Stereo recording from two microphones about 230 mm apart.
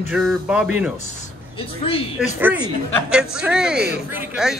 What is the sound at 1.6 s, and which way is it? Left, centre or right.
Speech, left.